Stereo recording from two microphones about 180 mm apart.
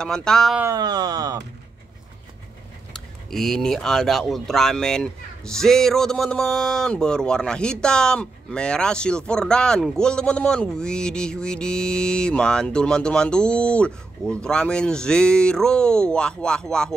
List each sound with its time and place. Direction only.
0.0 s speech: 5° left (ahead or behind)
0.6 s speech: 20° right (ahead or behind)
2.9 s speech: centre (ahead or behind)